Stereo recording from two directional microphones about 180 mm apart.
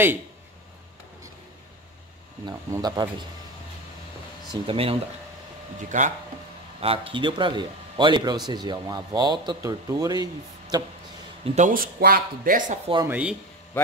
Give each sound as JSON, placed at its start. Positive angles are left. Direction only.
{"t": 2.4, "sound": "speech", "side_deg": -20}
{"t": 4.5, "sound": "speech", "side_deg": -30}
{"t": 5.8, "sound": "speech", "side_deg": -45}
{"t": 6.8, "sound": "speech", "side_deg": -30}
{"t": 11.4, "sound": "speech", "side_deg": -40}
{"t": 13.0, "sound": "speech", "side_deg": -10}